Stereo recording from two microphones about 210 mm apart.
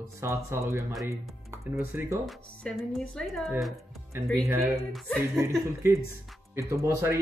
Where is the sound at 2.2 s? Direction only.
Centre (ahead or behind).